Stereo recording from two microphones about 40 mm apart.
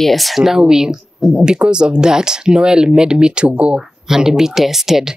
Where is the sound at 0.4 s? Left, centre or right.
Centre.